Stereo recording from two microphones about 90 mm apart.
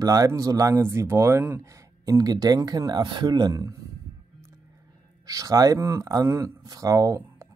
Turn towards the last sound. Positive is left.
turn(degrees=-40)  # may be behind; listen again after turning